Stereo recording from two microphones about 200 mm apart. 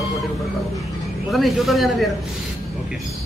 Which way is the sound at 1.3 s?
Centre (ahead or behind).